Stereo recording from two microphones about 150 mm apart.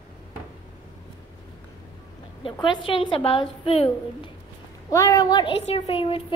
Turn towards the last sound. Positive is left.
turn(degrees=35)  # may be behind; listen again after turning